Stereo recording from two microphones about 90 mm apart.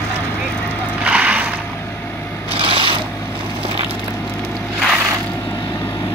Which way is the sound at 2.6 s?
70° right (ahead or behind).